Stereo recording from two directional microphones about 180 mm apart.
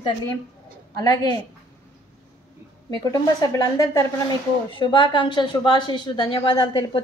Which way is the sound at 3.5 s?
20° left (ahead or behind).